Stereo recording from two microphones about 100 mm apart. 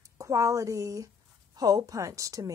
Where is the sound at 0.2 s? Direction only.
35° right (ahead or behind).